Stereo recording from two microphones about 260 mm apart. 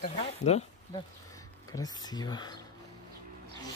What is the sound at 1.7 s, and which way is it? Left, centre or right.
Speech, centre.